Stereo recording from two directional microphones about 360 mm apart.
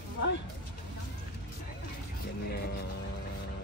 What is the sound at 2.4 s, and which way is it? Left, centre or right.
Music, left.